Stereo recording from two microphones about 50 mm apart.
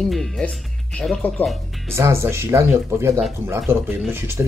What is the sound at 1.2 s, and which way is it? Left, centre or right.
Speech, left.